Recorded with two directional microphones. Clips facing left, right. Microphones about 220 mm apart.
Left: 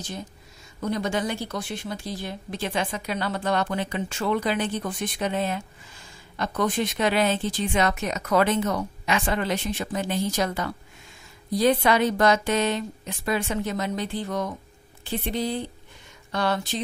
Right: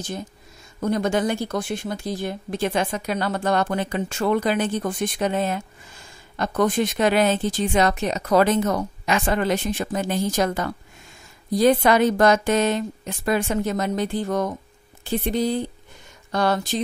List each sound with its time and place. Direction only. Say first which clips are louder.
0.7 s speech: right 5 dB; 50° right (ahead or behind)